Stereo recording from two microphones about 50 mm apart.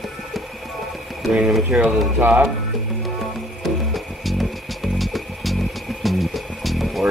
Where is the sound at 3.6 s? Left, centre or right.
Centre.